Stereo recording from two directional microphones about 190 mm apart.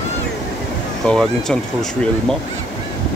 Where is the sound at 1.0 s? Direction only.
5° left (ahead or behind).